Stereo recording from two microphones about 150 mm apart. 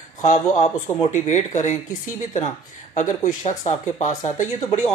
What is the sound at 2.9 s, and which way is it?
Speech, 55° left (ahead or behind).